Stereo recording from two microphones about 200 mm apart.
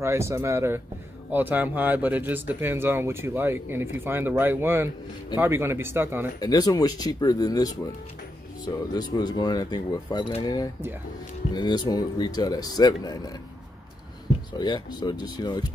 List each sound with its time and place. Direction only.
0.0 s speech: 15° right (ahead or behind)
6.4 s speech: 20° left (ahead or behind)
14.6 s speech: 20° left (ahead or behind)